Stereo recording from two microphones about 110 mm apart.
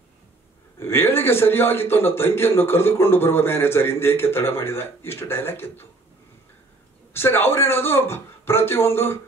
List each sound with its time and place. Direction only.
0.7 s a man's voice: 20° left (ahead or behind)
7.2 s a man's voice: 20° left (ahead or behind)